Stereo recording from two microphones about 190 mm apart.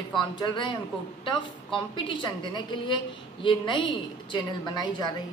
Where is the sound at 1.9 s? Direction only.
25° left (ahead or behind).